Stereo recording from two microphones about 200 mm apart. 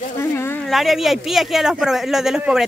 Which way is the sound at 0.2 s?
10° left (ahead or behind).